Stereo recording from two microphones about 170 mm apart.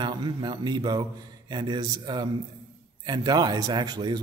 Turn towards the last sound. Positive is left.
turn(degrees=-25)  # may be behind; listen again after turning